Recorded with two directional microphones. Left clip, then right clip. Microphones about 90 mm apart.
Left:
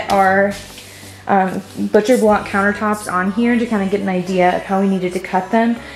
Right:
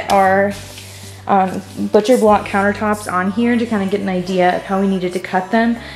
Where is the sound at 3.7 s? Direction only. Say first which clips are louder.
Even; 5° right (ahead or behind).